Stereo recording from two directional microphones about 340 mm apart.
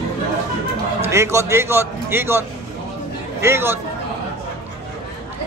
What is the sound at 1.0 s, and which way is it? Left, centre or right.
A man's voice, centre.